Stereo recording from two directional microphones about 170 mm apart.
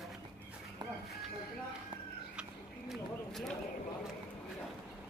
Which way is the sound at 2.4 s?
5° right (ahead or behind).